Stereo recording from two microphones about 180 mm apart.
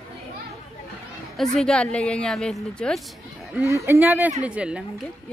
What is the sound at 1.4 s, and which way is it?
A woman's voice, 5° left (ahead or behind).